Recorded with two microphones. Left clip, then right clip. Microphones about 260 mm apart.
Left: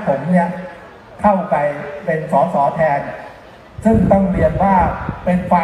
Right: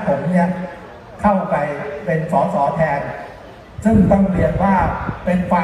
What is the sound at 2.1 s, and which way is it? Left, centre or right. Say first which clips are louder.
Speech: left 2 dB; left.